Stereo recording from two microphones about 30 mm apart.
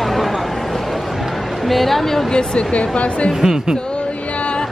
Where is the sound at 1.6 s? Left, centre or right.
Centre.